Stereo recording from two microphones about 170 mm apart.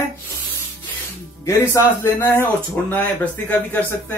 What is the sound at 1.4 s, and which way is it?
Speech, 15° left (ahead or behind).